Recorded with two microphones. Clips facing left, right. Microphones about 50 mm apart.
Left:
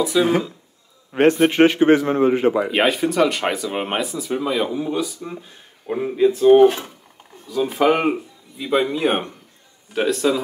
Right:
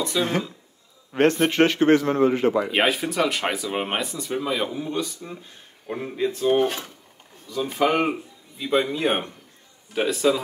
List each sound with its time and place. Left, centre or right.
0.0 s a man's voice: centre
2.7 s speech: centre